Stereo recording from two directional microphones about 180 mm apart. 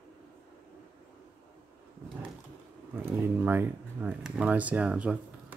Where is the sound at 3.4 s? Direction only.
10° right (ahead or behind).